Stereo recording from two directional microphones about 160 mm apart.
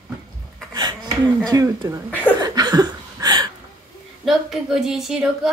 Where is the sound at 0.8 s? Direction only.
25° right (ahead or behind).